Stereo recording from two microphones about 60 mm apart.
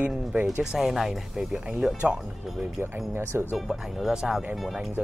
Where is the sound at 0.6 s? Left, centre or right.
Centre.